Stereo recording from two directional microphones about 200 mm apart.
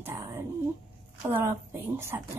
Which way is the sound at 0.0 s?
15° right (ahead or behind).